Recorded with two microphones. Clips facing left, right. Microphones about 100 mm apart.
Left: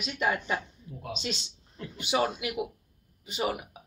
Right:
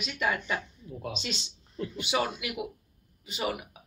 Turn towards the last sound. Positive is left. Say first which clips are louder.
# left 2 dB
turn(degrees=40)  # may be behind; listen again after turning